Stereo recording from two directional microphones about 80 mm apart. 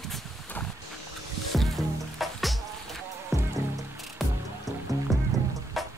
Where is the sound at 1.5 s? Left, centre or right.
Centre.